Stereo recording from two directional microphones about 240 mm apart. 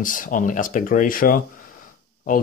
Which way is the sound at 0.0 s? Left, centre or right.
Left.